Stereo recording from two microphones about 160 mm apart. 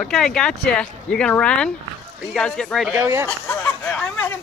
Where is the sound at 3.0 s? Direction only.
20° right (ahead or behind).